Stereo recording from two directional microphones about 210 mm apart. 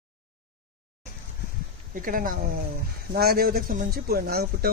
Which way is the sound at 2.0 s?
40° right (ahead or behind).